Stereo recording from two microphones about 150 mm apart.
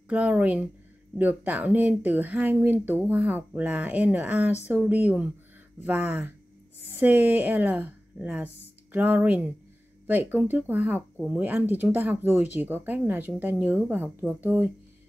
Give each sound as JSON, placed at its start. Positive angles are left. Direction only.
{"t": 0.1, "sound": "speech", "side_deg": -10}